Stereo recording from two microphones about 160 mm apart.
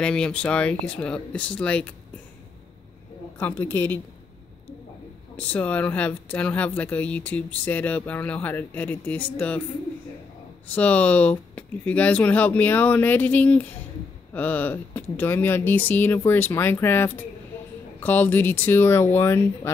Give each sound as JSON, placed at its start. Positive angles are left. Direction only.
{"t": 0.0, "sound": "speech", "side_deg": 5}
{"t": 3.3, "sound": "speech", "side_deg": 15}
{"t": 5.3, "sound": "speech", "side_deg": 10}
{"t": 10.7, "sound": "speech", "side_deg": 10}